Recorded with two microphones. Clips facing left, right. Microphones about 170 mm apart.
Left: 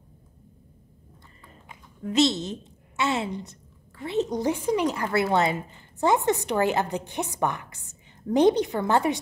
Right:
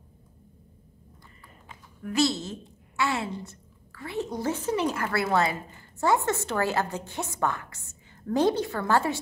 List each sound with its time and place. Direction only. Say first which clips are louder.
1.7 s a woman's voice: left 3 dB; 20° left (ahead or behind)